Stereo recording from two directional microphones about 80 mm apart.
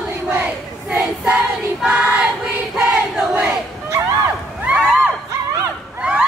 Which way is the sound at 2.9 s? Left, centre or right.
Centre.